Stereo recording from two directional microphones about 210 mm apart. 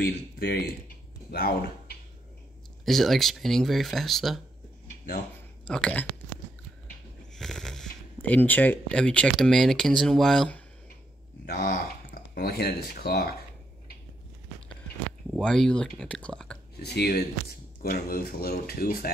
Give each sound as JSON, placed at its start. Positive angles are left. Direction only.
{"t": 0.0, "sound": "speech", "side_deg": 50}
{"t": 2.8, "sound": "speech", "side_deg": 0}
{"t": 5.7, "sound": "speech", "side_deg": 5}
{"t": 7.3, "sound": "speech", "side_deg": 0}
{"t": 11.4, "sound": "speech", "side_deg": 40}
{"t": 15.3, "sound": "speech", "side_deg": 5}
{"t": 16.8, "sound": "speech", "side_deg": 50}